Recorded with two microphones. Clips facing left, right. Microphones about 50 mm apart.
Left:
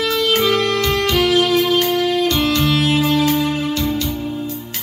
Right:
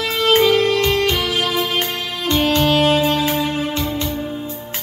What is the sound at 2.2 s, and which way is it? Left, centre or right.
Music, right.